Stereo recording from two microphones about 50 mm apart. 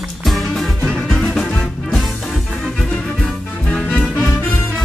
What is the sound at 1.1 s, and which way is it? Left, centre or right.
Music, centre.